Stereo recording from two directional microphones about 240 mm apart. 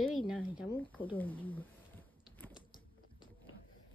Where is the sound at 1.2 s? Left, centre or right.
Centre.